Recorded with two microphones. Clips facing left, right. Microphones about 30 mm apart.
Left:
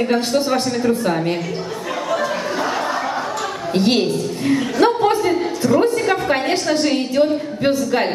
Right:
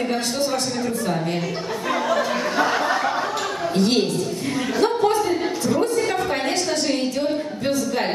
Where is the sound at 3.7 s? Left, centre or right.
Left.